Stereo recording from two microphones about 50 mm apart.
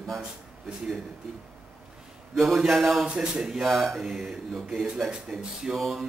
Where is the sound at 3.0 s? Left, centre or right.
Centre.